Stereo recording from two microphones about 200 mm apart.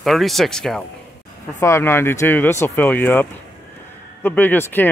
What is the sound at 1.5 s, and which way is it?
Speech, 10° left (ahead or behind).